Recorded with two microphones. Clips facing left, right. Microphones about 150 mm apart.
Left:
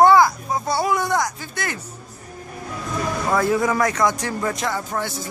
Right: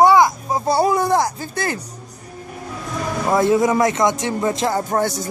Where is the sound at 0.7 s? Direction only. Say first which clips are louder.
Right 5 dB; 35° right (ahead or behind).